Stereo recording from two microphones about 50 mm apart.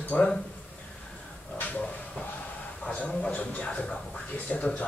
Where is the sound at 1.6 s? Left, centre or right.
Left.